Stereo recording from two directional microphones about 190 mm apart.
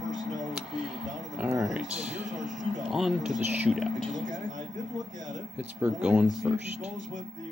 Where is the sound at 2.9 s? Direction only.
Centre (ahead or behind).